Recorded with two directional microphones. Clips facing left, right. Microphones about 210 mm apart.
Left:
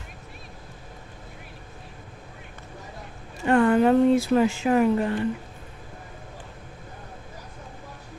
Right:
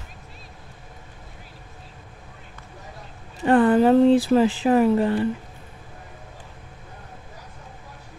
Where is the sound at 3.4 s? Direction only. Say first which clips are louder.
Right 2 dB; 35° right (ahead or behind).